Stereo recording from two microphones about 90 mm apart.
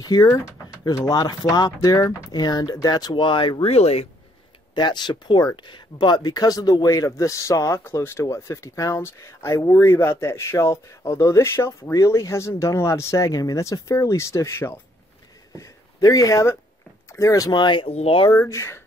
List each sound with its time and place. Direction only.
0.0 s speech: 45° left (ahead or behind)
3.2 s speech: 65° left (ahead or behind)
4.7 s speech: 55° left (ahead or behind); by 14.8 s 30° left (ahead or behind)
15.5 s speech: 40° left (ahead or behind)
17.5 s speech: 60° left (ahead or behind); by 18.3 s 80° left
18.4 s speech: 30° left (ahead or behind)